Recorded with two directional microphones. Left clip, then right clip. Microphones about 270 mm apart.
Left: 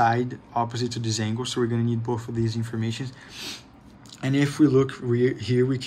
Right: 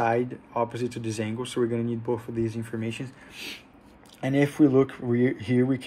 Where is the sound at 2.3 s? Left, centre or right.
Left.